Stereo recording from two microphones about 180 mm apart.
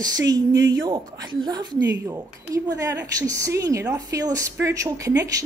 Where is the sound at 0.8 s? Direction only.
25° right (ahead or behind).